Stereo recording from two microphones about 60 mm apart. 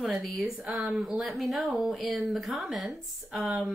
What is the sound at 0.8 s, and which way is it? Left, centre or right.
Speech, centre.